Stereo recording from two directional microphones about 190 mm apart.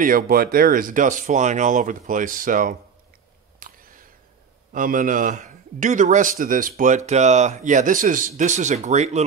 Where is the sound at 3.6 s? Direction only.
45° right (ahead or behind).